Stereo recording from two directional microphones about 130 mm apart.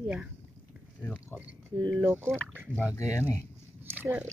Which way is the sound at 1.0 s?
20° left (ahead or behind).